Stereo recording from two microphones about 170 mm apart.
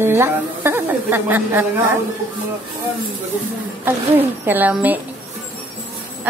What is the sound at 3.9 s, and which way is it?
A woman's voice, 10° right (ahead or behind).